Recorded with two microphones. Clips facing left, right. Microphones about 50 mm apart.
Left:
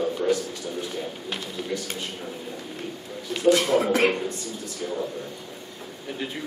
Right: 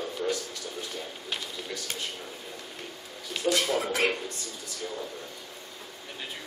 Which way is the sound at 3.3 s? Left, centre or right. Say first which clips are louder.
Left 7 dB; centre.